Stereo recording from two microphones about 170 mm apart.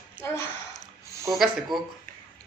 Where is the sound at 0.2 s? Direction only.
15° left (ahead or behind).